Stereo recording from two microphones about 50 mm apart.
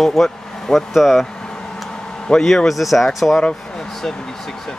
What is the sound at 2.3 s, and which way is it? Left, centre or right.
Speech, centre.